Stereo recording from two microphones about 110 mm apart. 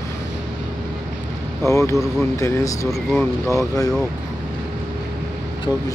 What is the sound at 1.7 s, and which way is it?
Speech, 30° left (ahead or behind).